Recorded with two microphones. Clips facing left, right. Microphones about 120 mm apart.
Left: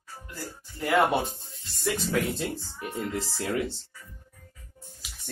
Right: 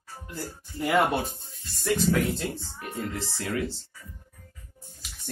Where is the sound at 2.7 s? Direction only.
25° left (ahead or behind).